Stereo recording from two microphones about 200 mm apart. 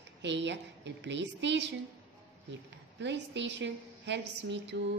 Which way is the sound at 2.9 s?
60° right (ahead or behind).